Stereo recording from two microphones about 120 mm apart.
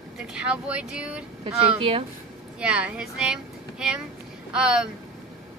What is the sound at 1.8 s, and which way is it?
Speech, 50° right (ahead or behind).